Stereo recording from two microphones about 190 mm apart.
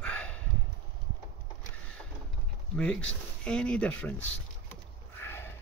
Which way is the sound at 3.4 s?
5° left (ahead or behind).